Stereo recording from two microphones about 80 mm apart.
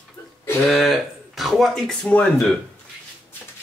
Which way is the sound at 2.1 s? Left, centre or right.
Centre.